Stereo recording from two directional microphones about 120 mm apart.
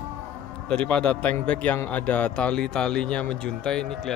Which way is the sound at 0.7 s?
10° left (ahead or behind).